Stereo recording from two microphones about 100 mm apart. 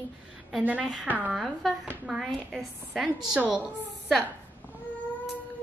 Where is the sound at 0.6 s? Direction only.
10° right (ahead or behind).